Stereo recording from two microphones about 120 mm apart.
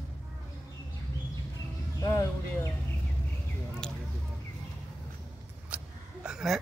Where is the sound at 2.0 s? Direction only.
25° left (ahead or behind).